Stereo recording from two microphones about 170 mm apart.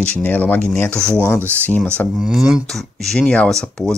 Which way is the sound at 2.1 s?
5° right (ahead or behind).